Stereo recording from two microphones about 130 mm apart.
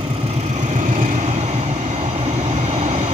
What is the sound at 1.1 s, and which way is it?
Vehicle, 55° right (ahead or behind).